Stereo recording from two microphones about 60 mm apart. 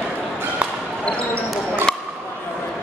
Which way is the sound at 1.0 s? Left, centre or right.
Centre.